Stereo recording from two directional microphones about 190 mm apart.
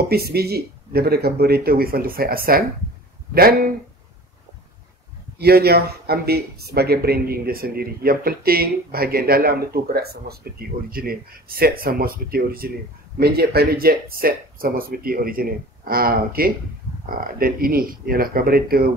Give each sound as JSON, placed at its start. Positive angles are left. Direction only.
{"t": 0.1, "sound": "speech", "side_deg": -55}
{"t": 5.4, "sound": "speech", "side_deg": -55}